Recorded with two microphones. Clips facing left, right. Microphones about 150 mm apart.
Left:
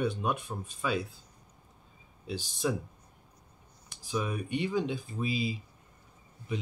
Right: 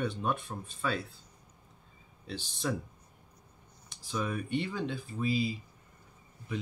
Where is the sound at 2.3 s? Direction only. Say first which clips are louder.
Left 3 dB; 10° left (ahead or behind).